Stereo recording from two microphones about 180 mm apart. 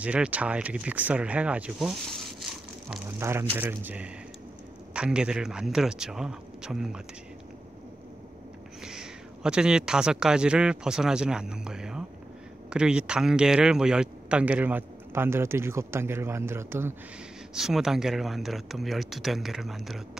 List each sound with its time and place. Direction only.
0.0 s speech: 5° right (ahead or behind)
3.2 s speech: 15° right (ahead or behind)
8.8 s speech: 5° right (ahead or behind)
17.6 s speech: 5° right (ahead or behind)